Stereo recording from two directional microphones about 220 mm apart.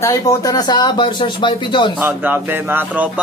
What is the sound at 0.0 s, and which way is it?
Speech, 15° left (ahead or behind).